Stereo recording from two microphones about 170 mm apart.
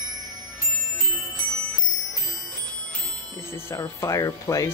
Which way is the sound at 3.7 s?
15° left (ahead or behind).